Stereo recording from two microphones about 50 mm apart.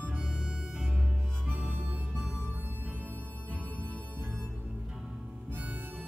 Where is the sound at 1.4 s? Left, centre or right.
Right.